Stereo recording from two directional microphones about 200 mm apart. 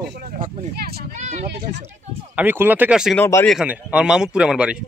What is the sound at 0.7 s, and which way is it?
Speech, 50° right (ahead or behind).